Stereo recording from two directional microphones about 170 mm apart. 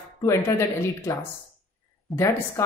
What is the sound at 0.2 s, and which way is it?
Speech, 15° left (ahead or behind).